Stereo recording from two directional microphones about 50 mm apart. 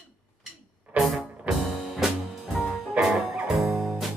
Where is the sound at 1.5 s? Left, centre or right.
Centre.